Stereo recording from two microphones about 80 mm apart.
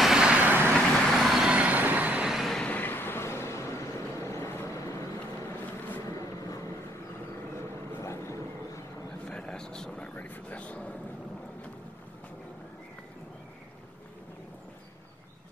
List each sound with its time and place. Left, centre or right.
0.0 s vehicle: centre
0.4 s vehicle: right
1.1 s vehicle: centre
2.2 s vehicle: centre
2.5 s vehicle: centre; by 4.5 s left
7.5 s vehicle: left
9.3 s vehicle: centre
10.1 s vehicle: left